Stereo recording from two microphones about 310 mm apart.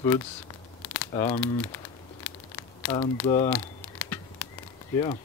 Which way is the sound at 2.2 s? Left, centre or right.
Centre.